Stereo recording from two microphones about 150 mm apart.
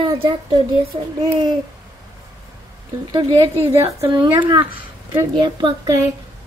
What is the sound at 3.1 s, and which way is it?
Speech, 30° right (ahead or behind).